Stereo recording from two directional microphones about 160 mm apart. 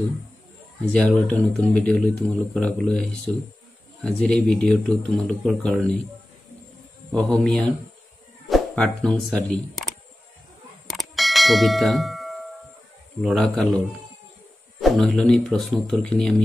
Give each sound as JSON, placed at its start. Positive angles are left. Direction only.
{"t": 0.9, "sound": "speech", "side_deg": 10}
{"t": 7.1, "sound": "speech", "side_deg": 5}
{"t": 10.9, "sound": "bell", "side_deg": 0}
{"t": 13.2, "sound": "speech", "side_deg": 0}